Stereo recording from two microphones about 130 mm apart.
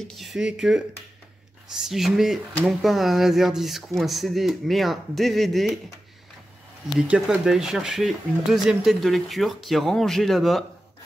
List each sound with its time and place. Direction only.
0.1 s speech: centre (ahead or behind)
7.0 s speech: 5° right (ahead or behind)